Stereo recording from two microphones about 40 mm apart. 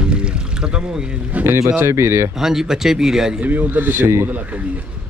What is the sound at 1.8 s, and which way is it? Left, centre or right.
Speech, right.